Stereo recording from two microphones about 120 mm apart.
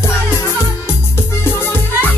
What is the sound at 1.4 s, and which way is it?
Music, 20° left (ahead or behind).